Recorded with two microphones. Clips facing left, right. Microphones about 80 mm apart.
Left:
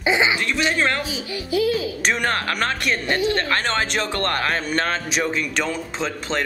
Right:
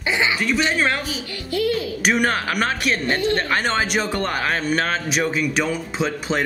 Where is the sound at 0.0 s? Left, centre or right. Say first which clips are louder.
Left 2 dB; centre.